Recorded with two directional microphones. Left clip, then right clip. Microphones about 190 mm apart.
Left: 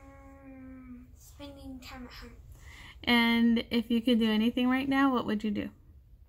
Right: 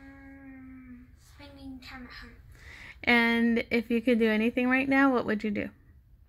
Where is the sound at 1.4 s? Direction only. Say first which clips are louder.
Left 4 dB; 5° left (ahead or behind).